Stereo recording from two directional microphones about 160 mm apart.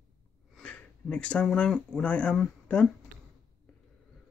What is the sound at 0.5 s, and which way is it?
Speech, 5° left (ahead or behind).